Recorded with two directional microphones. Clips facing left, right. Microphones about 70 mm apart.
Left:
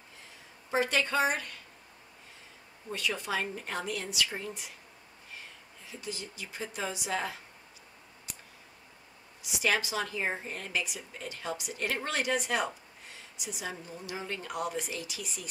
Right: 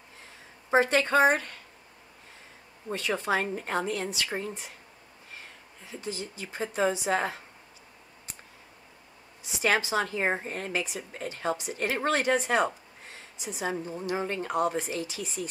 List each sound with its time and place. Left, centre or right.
0.7 s speech: right
2.9 s speech: right
5.9 s speech: right
9.4 s speech: right